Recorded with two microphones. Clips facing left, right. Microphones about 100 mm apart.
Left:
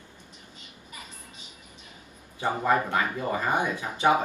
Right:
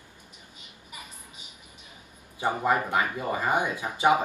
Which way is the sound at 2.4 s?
15° right (ahead or behind).